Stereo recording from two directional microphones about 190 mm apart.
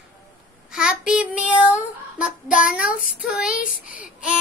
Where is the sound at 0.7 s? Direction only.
5° right (ahead or behind).